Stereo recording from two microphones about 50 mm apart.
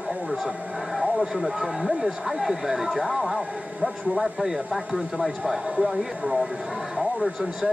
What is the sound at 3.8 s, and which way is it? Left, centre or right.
Speech, right.